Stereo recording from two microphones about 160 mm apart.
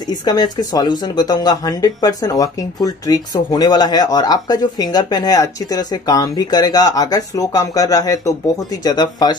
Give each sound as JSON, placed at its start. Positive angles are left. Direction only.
{"t": 0.1, "sound": "speech", "side_deg": 25}